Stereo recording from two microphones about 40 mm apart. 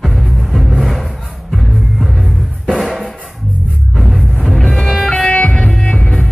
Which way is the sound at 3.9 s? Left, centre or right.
Centre.